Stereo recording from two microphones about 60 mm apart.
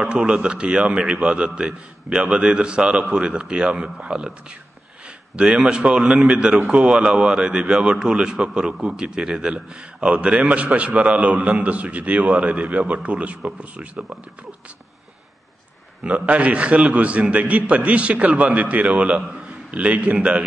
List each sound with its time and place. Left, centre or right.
0.0 s a man's voice: centre
16.0 s a man's voice: right